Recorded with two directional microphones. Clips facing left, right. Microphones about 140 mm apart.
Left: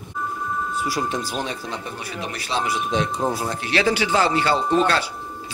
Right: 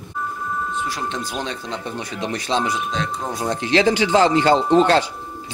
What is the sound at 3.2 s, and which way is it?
Speech, 30° left (ahead or behind).